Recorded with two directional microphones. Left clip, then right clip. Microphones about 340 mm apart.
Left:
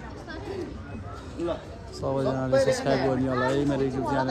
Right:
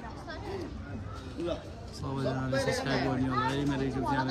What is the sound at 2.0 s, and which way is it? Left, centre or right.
Speech, centre.